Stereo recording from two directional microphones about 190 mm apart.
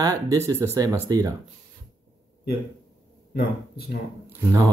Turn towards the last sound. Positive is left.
turn(degrees=-15)  # may be behind; listen again after turning